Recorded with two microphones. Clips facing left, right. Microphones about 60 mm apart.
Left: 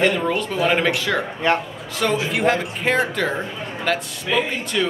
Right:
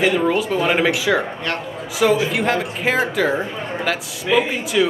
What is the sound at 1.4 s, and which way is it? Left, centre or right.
Speech, centre.